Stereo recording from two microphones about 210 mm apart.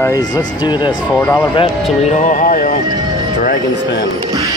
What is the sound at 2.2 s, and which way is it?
Speech, 40° left (ahead or behind).